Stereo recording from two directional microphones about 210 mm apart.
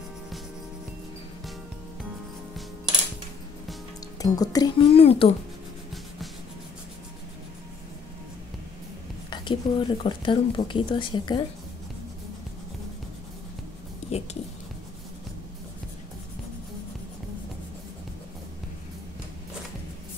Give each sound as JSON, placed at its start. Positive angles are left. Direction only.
{"t": 4.2, "sound": "speech", "side_deg": 20}
{"t": 9.3, "sound": "speech", "side_deg": 20}
{"t": 14.1, "sound": "speech", "side_deg": 30}